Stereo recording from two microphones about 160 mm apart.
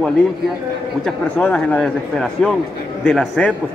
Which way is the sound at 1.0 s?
5° left (ahead or behind).